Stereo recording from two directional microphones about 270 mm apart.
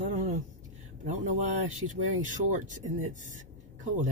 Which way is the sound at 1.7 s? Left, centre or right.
Right.